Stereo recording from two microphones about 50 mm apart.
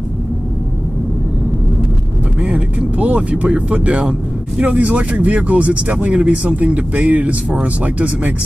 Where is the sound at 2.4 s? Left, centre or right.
Right.